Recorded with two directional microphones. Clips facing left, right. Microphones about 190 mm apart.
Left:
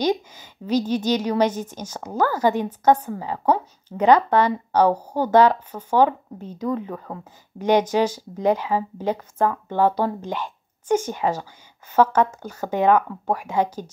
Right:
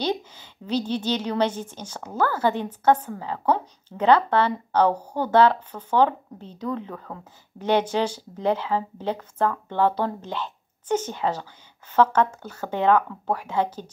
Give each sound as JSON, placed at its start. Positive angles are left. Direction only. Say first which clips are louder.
{"t": 0.0, "sound": "a woman's voice", "louder": "left 4 dB", "side_deg": 10}